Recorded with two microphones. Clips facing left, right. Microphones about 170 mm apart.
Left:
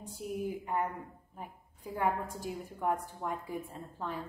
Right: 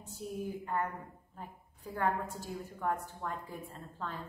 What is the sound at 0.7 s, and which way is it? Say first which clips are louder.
Speech: left 1 dB; 15° left (ahead or behind).